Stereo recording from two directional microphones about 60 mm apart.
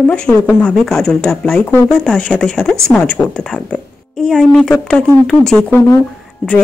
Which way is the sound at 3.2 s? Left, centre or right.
Left.